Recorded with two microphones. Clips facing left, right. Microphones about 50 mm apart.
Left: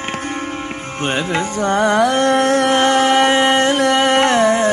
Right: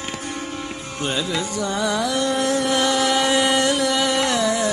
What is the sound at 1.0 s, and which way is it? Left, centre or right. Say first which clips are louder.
Music: left 5 dB; left.